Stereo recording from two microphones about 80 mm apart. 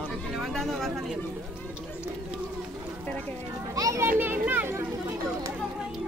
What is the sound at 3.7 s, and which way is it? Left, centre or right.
Speech, right.